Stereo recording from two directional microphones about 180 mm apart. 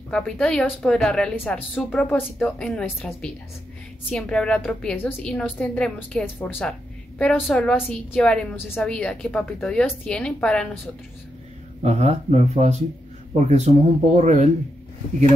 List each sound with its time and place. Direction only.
0.1 s a woman's voice: 5° left (ahead or behind)
11.8 s speech: 35° right (ahead or behind)